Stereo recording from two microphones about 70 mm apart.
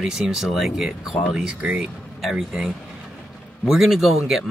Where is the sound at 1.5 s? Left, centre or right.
Right.